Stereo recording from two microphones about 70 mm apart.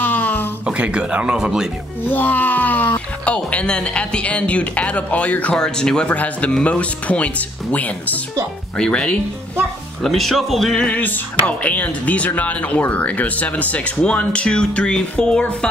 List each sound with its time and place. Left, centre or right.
0.0 s a sound: left
0.7 s speech: centre
2.0 s speech: left
10.0 s music: centre
10.9 s speech: left